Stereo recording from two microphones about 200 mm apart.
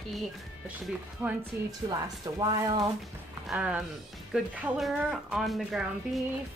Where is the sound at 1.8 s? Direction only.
20° right (ahead or behind).